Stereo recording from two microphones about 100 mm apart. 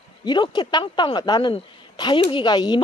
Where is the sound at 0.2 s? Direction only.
50° left (ahead or behind).